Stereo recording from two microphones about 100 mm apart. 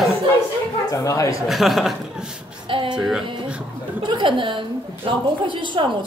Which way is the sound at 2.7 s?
60° right (ahead or behind).